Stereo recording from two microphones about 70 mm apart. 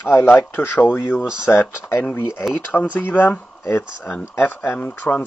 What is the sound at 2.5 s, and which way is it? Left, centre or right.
Speech, left.